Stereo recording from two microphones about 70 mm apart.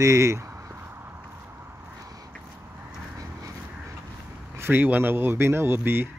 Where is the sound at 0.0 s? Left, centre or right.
Right.